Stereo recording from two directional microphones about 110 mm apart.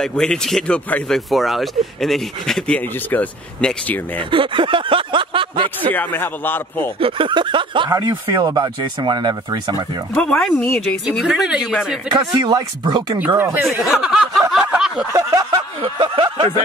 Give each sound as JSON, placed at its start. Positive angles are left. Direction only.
{"t": 0.0, "sound": "speech", "side_deg": 5}
{"t": 3.1, "sound": "speech", "side_deg": 15}
{"t": 4.3, "sound": "speech", "side_deg": -50}
{"t": 5.9, "sound": "speech", "side_deg": 20}
{"t": 7.0, "sound": "speech", "side_deg": -55}
{"t": 7.9, "sound": "speech", "side_deg": -30}
{"t": 10.1, "sound": "speech", "side_deg": 5}
{"t": 11.1, "sound": "speech", "side_deg": -5}
{"t": 12.1, "sound": "speech", "side_deg": -40}
{"t": 13.4, "sound": "speech", "side_deg": -20}
{"t": 13.7, "sound": "speech", "side_deg": -5}
{"t": 14.6, "sound": "a sound", "side_deg": -5}
{"t": 15.1, "sound": "speech", "side_deg": -30}
{"t": 15.8, "sound": "speech", "side_deg": -50}